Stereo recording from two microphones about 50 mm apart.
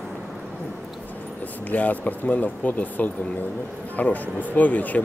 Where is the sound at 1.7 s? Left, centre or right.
Left.